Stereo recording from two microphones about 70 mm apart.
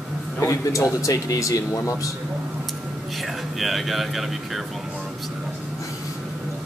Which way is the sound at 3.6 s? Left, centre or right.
Centre.